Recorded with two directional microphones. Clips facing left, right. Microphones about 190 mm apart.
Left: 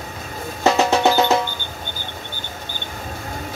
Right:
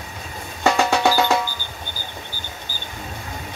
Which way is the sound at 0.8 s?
20° left (ahead or behind).